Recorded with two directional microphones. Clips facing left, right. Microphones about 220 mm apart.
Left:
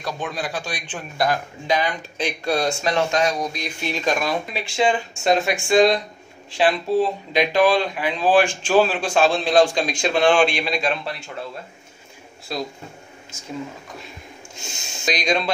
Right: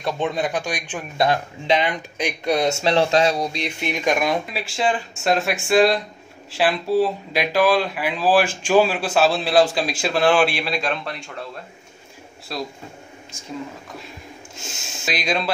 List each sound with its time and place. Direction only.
0.0 s speech: 25° right (ahead or behind)
1.1 s speech: 25° right (ahead or behind)
4.6 s speech: centre (ahead or behind)
14.6 s speech: centre (ahead or behind)